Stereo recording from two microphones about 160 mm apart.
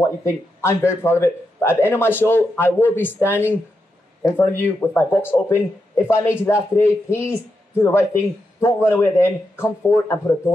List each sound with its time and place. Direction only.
0.0 s speech: 15° left (ahead or behind)